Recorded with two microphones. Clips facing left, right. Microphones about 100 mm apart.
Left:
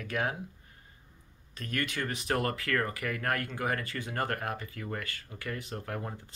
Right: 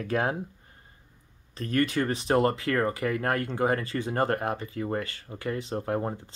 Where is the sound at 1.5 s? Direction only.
35° right (ahead or behind).